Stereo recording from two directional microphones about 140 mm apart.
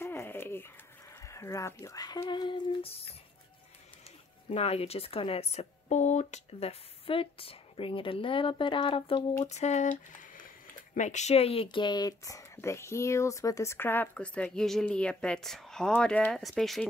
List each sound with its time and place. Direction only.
0.0 s a sound: 15° left (ahead or behind)
1.2 s speech: 20° left (ahead or behind); by 3.2 s 45° left (ahead or behind)
4.5 s a woman's voice: 45° left (ahead or behind); by 16.8 s centre (ahead or behind)